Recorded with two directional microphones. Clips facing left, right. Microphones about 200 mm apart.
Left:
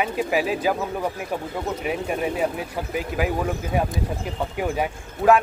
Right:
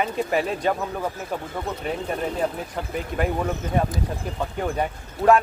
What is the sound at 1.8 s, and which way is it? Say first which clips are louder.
Speech: left 2 dB; 10° left (ahead or behind).